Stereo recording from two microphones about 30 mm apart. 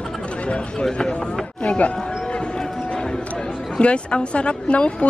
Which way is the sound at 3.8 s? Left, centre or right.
Left.